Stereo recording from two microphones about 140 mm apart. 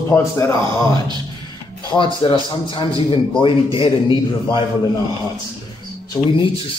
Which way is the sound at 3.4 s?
40° left (ahead or behind).